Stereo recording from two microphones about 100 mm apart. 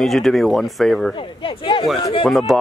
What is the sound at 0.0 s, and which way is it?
Speech, centre (ahead or behind).